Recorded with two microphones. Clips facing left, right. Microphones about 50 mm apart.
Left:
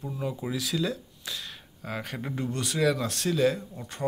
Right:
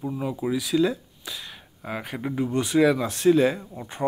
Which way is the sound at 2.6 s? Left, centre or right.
Centre.